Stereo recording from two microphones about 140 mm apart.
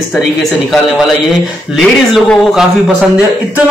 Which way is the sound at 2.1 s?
Centre (ahead or behind).